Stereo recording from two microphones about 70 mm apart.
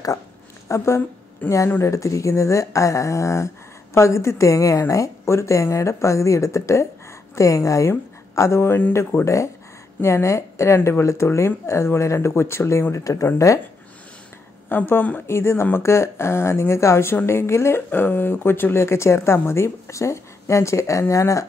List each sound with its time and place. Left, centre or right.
0.7 s speech: left
1.4 s speech: left
1.8 s speech: left
8.4 s speech: left
14.7 s speech: left